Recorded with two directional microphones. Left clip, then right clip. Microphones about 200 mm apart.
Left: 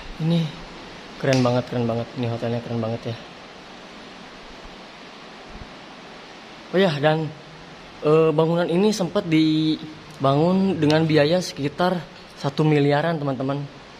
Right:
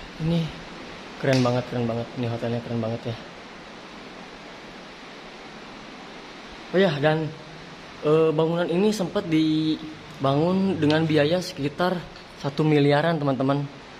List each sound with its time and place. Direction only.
1.2 s speech: 15° left (ahead or behind)
6.7 s speech: 10° left (ahead or behind)
8.0 s speech: 20° left (ahead or behind); by 13.6 s 5° right (ahead or behind)